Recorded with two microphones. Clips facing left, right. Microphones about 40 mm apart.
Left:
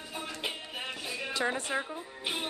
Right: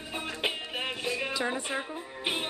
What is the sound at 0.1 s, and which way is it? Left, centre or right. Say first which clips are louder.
Music: right 5 dB; right.